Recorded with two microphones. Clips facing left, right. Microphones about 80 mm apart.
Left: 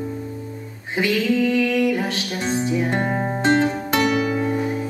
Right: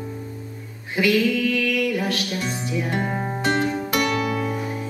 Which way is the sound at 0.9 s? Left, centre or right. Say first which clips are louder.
Even; left.